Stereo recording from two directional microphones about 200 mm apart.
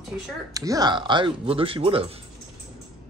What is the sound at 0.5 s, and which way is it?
Speech, 15° right (ahead or behind).